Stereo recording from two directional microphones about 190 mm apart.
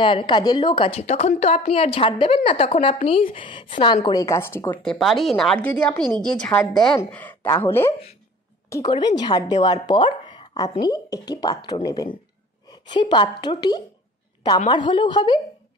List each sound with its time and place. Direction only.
0.0 s a woman's voice: 25° left (ahead or behind)